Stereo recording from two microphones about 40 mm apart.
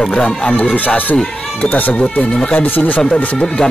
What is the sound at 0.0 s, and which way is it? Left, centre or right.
Speech, left.